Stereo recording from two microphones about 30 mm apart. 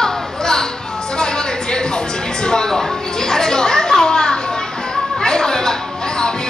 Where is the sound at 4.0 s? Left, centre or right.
Left.